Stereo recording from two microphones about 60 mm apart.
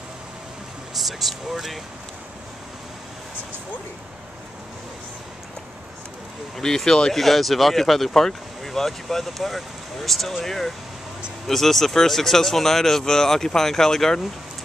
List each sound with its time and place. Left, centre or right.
0.9 s speech: centre
6.6 s speech: centre